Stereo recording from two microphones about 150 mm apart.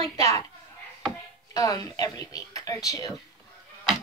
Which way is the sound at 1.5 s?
25° left (ahead or behind).